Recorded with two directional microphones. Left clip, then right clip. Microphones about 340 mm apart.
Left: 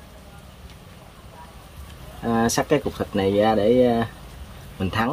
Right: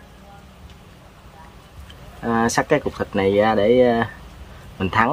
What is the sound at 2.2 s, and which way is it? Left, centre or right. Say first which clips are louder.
Speech: right 2 dB; centre.